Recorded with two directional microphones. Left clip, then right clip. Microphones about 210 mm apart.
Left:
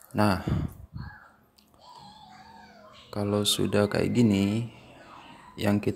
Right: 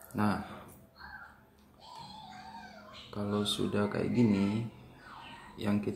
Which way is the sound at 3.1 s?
40° left (ahead or behind).